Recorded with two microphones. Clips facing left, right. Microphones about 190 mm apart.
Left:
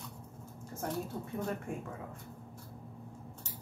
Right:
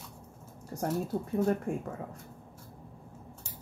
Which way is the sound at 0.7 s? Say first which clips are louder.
Right 6 dB; 35° right (ahead or behind).